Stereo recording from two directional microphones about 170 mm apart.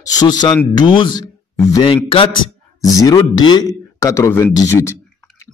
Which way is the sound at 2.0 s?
30° left (ahead or behind).